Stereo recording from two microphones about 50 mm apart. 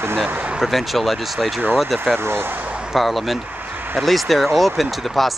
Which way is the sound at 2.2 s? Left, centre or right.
Right.